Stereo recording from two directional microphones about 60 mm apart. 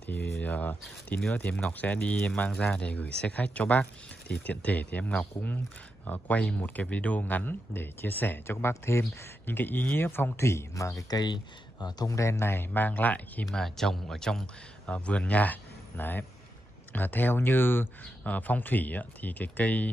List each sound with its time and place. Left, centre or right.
0.1 s a sound: left
1.3 s speech: left
10.7 s speech: left
12.0 s speech: left
13.5 s speech: centre
14.9 s speech: left